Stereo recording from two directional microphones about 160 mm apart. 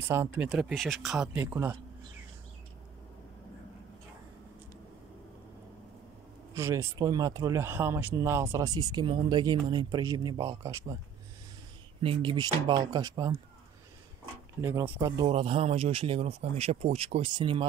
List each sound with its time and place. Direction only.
0.1 s speech: 15° right (ahead or behind)
0.5 s speech: centre (ahead or behind)
6.5 s speech: 20° right (ahead or behind)
12.0 s speech: 35° right (ahead or behind)
14.6 s speech: 15° right (ahead or behind)
15.2 s speech: 35° right (ahead or behind)